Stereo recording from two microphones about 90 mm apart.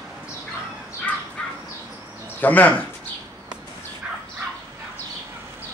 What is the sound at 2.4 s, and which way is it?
Speech, 20° left (ahead or behind).